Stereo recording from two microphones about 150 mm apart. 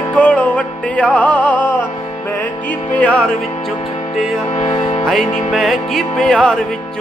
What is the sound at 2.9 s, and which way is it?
Music, 10° left (ahead or behind).